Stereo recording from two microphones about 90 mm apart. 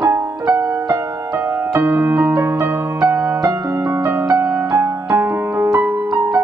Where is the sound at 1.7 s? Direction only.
20° right (ahead or behind).